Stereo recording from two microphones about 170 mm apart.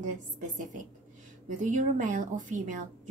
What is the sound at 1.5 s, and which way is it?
A woman's voice, 45° right (ahead or behind).